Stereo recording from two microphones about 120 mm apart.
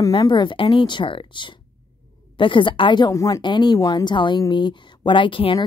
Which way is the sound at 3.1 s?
25° left (ahead or behind).